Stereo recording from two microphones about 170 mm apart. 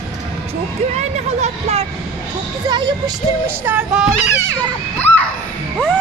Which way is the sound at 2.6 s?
25° right (ahead or behind).